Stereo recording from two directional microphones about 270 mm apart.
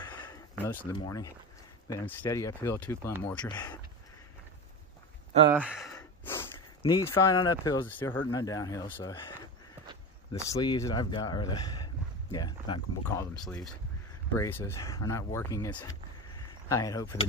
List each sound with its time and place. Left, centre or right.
0.0 s a sound: centre
0.9 s speech: centre
5.5 s speech: centre
5.9 s a sound: centre
6.8 s speech: centre
14.3 s speech: centre